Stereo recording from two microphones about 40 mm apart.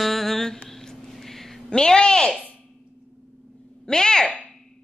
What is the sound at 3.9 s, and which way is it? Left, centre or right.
Speech, centre.